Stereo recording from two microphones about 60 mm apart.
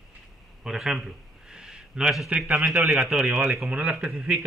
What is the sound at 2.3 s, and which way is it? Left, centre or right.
Speech, right.